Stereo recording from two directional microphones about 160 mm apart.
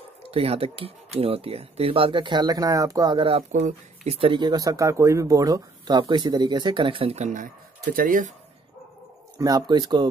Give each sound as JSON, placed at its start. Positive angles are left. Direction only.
{"t": 0.3, "sound": "speech", "side_deg": -40}
{"t": 9.4, "sound": "speech", "side_deg": -25}